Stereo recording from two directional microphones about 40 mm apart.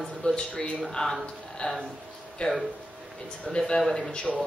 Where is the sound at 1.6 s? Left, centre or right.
Left; by 4.1 s centre.